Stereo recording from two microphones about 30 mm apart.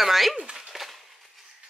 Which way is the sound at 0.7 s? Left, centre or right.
Centre.